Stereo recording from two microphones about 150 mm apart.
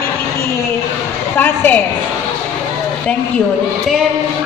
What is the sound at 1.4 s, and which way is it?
Speech, 15° left (ahead or behind).